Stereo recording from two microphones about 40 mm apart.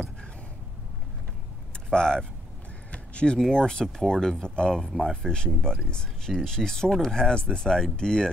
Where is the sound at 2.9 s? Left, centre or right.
Left.